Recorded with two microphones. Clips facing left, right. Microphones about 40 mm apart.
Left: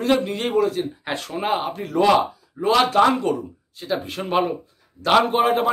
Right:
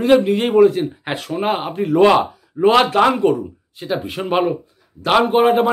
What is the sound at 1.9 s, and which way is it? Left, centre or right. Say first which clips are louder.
A man's voice: right 4 dB; right.